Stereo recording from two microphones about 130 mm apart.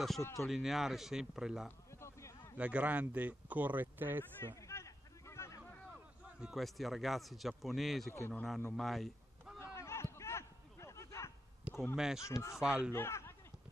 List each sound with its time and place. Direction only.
0.5 s speech: centre (ahead or behind)
1.9 s a sound: 20° left (ahead or behind)
2.5 s speech: 10° right (ahead or behind)
4.2 s a sound: 20° left (ahead or behind)
6.4 s a man's voice: centre (ahead or behind)
8.7 s honk: centre (ahead or behind)
9.6 s a sound: 20° left (ahead or behind)
11.9 s speech: 5° right (ahead or behind)
12.2 s speech: 20° left (ahead or behind)
12.5 s speech: 5° right (ahead or behind)
12.9 s speech: 20° left (ahead or behind)